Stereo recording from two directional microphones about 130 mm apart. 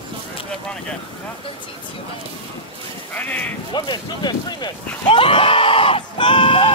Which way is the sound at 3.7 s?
35° left (ahead or behind).